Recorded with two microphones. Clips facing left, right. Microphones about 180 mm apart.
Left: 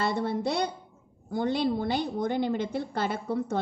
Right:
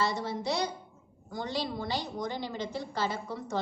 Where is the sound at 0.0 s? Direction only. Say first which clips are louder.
Left 4 dB; 55° left (ahead or behind).